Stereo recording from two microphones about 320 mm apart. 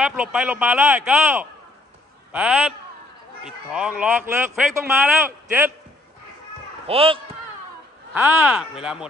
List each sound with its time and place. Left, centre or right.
0.0 s a man's voice: centre
6.9 s a man's voice: centre
8.1 s speech: centre